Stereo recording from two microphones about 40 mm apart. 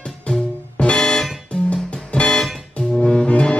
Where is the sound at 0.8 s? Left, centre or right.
Centre.